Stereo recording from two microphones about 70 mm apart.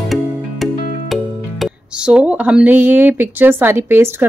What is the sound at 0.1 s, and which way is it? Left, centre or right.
Music, centre.